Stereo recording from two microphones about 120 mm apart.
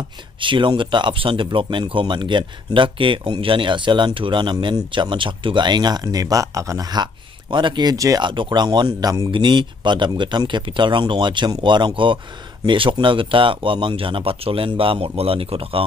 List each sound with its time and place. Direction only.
0.4 s speech: 45° right (ahead or behind)
8.2 s speech: 40° right (ahead or behind)